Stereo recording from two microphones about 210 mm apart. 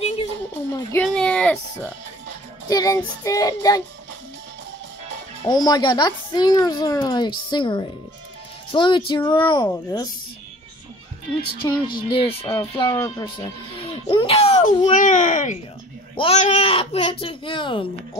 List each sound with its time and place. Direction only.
0.9 s a sound: 5° left (ahead or behind)
2.7 s child singing: 15° left (ahead or behind)
5.4 s speech: 20° left (ahead or behind)
11.6 s speech: 20° left (ahead or behind)